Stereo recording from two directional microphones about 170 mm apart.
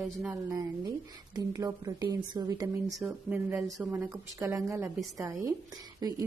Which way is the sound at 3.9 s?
20° right (ahead or behind).